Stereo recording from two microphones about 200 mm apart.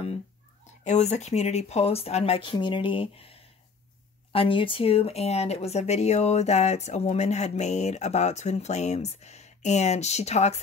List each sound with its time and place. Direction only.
0.8 s speech: 35° left (ahead or behind)